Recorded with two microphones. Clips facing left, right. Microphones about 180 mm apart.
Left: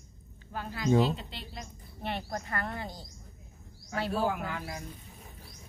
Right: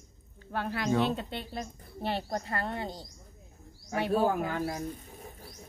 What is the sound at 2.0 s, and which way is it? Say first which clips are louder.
A woman's voice: right 3 dB; 30° right (ahead or behind).